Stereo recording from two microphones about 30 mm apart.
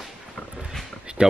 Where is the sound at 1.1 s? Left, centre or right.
Right.